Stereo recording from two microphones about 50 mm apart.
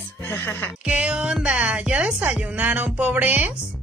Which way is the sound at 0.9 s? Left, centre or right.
Right.